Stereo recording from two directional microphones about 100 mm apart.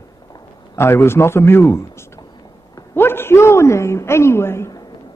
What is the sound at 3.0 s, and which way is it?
A man's voice, 20° left (ahead or behind).